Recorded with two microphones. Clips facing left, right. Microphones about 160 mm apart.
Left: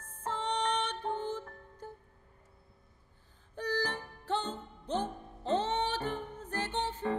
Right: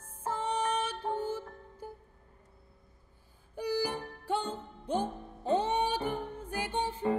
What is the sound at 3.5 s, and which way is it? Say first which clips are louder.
Music: right 2 dB; 10° right (ahead or behind).